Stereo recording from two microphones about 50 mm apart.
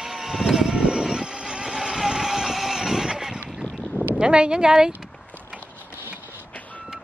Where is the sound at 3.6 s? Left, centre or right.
Left.